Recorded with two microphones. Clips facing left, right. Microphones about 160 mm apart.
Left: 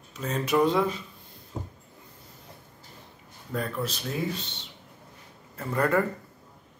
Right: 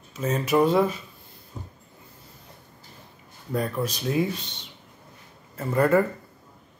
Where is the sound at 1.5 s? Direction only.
90° left.